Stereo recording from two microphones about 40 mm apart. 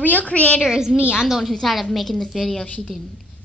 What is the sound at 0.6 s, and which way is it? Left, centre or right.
Speech, centre.